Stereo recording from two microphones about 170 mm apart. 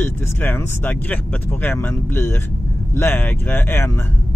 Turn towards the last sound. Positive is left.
turn(degrees=15)  # may be behind; listen again after turning